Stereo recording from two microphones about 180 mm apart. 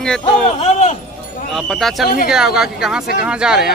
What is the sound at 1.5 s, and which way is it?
A man's voice, centre (ahead or behind).